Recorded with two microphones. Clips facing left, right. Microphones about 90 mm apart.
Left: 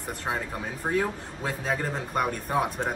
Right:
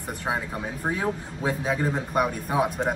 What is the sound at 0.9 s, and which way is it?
Speech, 15° right (ahead or behind).